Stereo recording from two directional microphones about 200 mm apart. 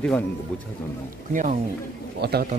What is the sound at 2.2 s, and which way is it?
Speech, 50° right (ahead or behind).